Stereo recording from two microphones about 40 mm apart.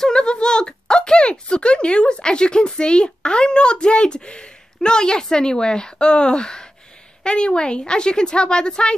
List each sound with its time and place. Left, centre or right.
0.0 s a woman's voice: left